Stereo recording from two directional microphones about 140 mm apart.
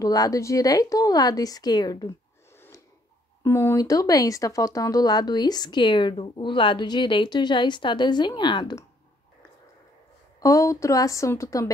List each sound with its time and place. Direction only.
0.0 s a woman's voice: 25° left (ahead or behind)
3.4 s speech: 20° left (ahead or behind)
10.4 s a woman's voice: 25° left (ahead or behind)